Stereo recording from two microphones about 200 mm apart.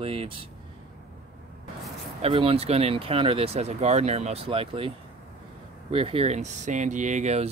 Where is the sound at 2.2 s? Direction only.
30° right (ahead or behind).